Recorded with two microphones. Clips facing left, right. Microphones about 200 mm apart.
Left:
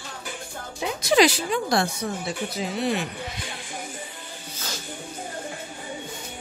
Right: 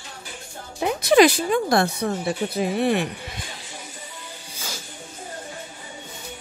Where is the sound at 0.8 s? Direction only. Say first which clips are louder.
Right 4 dB; 60° right (ahead or behind).